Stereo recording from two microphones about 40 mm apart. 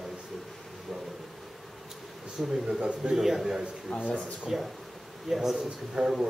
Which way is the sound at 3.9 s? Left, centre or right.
Centre.